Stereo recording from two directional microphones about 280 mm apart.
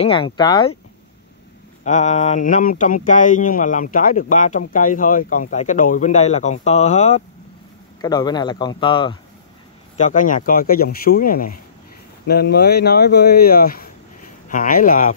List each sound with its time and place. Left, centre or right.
0.0 s speech: centre
1.9 s speech: left